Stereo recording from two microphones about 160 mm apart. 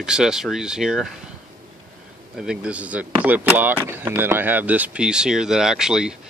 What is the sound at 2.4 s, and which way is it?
Speech, 5° right (ahead or behind).